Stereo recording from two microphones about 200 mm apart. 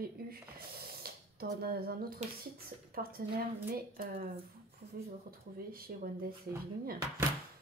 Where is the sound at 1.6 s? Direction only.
50° right (ahead or behind).